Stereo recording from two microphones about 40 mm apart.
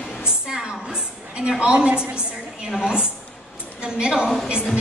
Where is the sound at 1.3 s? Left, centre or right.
Right.